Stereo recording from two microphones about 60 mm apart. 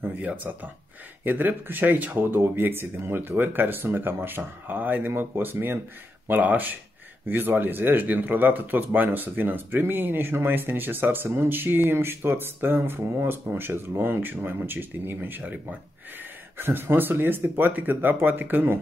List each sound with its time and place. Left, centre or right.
0.0 s speech: right
16.5 s speech: right